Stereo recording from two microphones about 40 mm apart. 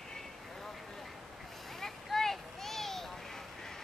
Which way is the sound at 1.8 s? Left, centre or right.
Centre.